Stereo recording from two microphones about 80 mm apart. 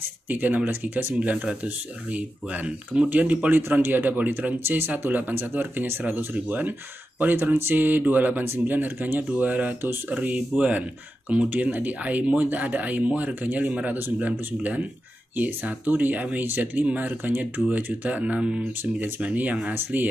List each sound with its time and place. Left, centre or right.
0.3 s speech: right